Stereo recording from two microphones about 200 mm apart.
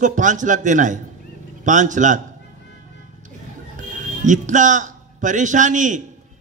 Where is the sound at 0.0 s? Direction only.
40° right (ahead or behind).